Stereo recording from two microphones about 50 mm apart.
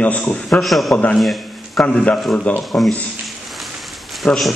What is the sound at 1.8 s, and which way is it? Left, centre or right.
Speech, centre.